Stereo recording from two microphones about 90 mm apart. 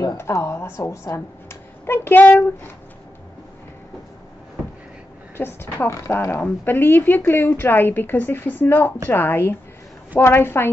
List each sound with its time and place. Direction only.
0.2 s a woman's voice: 30° left (ahead or behind)
5.4 s a woman's voice: 25° left (ahead or behind)
6.4 s a woman's voice: 20° left (ahead or behind)